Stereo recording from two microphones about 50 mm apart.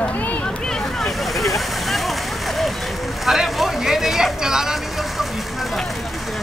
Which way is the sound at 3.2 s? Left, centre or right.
Centre.